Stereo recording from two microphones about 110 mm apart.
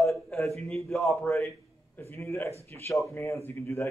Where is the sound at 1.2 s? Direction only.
25° left (ahead or behind).